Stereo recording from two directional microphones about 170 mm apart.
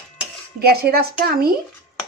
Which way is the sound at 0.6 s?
65° right (ahead or behind).